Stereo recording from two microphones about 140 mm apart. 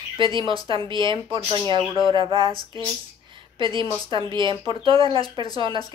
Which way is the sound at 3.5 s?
35° right (ahead or behind).